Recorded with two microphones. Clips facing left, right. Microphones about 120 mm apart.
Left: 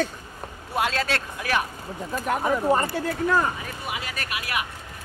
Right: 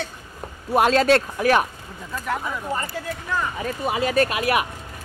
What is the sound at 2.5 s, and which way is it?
Speech, 40° left (ahead or behind).